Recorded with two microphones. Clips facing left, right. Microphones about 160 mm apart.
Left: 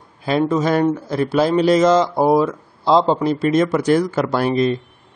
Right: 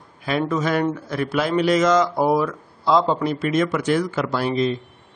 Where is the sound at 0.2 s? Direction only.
30° left (ahead or behind); by 4.7 s 50° left (ahead or behind).